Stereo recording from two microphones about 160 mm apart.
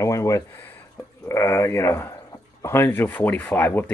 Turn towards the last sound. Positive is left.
turn(degrees=10)  # may be behind; listen again after turning